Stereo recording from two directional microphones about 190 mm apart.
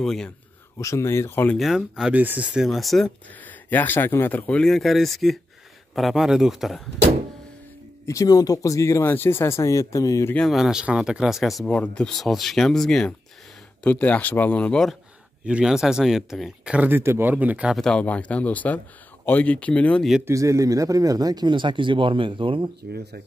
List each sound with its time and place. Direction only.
0.0 s speech: centre (ahead or behind)
0.7 s speech: 15° left (ahead or behind); by 6.8 s centre (ahead or behind)
8.1 s speech: 20° left (ahead or behind)
10.3 s speech: centre (ahead or behind)
20.2 s speech: 15° right (ahead or behind)